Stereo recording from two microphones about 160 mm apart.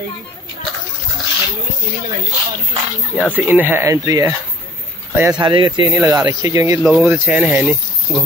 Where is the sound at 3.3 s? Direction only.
10° right (ahead or behind).